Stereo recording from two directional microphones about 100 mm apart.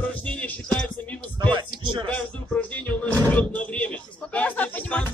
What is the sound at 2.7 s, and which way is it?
Music, 15° left (ahead or behind).